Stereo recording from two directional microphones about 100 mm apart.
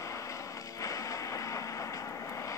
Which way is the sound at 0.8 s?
35° left (ahead or behind).